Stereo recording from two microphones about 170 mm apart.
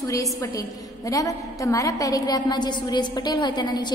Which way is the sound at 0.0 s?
20° left (ahead or behind).